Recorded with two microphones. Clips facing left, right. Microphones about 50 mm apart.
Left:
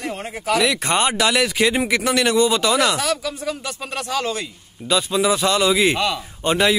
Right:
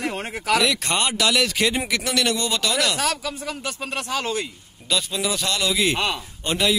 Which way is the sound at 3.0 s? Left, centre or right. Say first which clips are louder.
Left 2 dB; right.